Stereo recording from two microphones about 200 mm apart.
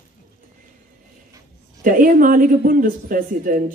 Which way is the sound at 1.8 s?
45° right (ahead or behind).